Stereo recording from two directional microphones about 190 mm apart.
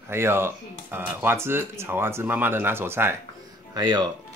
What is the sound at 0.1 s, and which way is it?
Speech, 10° right (ahead or behind).